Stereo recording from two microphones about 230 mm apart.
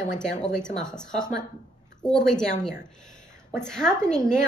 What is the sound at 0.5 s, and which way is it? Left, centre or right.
A woman's voice, centre.